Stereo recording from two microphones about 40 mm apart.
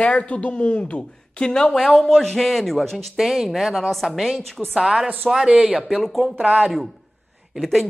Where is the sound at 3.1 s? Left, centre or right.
Centre.